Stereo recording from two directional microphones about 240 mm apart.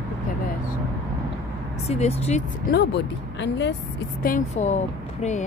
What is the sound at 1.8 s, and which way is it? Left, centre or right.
Speech, left.